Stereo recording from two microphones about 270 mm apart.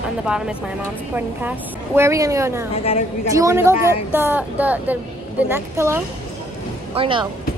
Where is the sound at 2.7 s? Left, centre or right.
Left.